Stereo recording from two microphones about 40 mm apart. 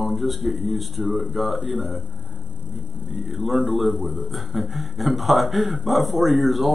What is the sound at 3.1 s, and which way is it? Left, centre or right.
Speech, centre.